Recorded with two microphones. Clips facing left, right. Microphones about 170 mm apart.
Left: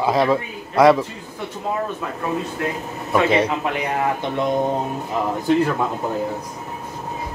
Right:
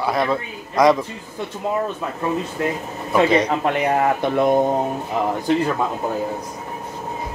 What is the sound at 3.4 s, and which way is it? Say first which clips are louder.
Speech: right 3 dB; 50° right (ahead or behind).